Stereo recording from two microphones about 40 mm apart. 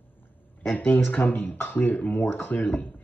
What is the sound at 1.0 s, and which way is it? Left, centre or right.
Speech, left.